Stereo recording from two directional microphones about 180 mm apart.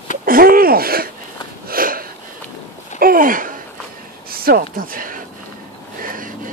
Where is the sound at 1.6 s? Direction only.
55° right (ahead or behind).